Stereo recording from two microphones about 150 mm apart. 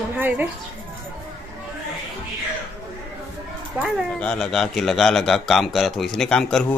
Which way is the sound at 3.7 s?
5° right (ahead or behind).